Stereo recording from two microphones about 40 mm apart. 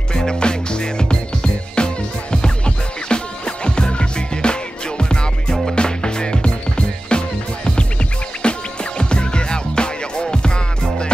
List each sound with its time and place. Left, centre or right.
0.1 s music: centre